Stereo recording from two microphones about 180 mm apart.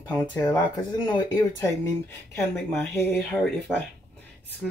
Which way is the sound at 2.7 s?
10° left (ahead or behind).